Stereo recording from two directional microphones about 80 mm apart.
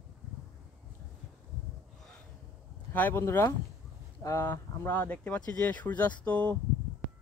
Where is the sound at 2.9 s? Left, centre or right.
Left.